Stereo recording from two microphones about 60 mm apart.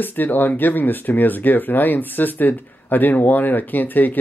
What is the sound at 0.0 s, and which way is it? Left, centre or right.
Speech, left.